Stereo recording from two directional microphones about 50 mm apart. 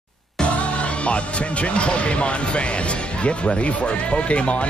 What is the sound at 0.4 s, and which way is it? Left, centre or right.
Speech, left.